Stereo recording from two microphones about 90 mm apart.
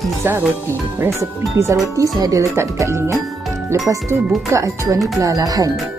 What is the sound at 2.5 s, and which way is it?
Speech, 30° right (ahead or behind).